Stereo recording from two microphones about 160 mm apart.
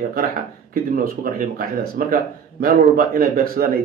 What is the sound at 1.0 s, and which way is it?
A man's voice, 60° right (ahead or behind).